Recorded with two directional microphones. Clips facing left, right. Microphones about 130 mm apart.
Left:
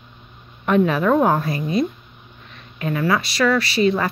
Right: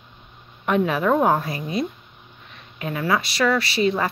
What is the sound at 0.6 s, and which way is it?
Speech, 10° right (ahead or behind).